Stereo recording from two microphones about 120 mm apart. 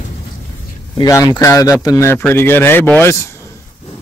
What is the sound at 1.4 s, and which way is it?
Speech, 30° left (ahead or behind).